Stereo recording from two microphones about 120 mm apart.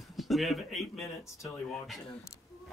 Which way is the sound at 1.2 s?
25° left (ahead or behind).